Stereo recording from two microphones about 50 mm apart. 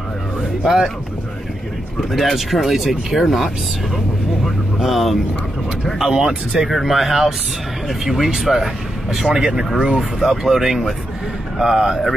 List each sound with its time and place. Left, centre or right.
0.6 s speech: centre
2.0 s speech: centre
4.7 s speech: centre
6.7 s speech: centre